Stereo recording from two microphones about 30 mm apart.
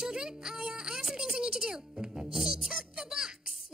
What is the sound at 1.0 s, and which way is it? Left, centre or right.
Music, centre.